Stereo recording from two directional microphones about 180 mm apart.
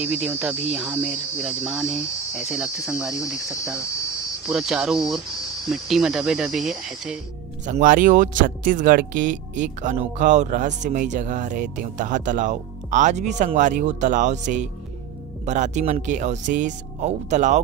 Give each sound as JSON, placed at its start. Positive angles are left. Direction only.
{"t": 0.0, "sound": "cricket", "side_deg": -10}
{"t": 7.6, "sound": "speech", "side_deg": -45}